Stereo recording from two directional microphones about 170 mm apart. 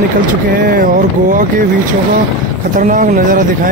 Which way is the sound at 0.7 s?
55° right (ahead or behind).